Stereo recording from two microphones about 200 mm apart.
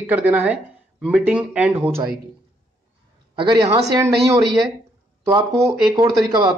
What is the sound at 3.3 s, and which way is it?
A woman's voice, 25° right (ahead or behind).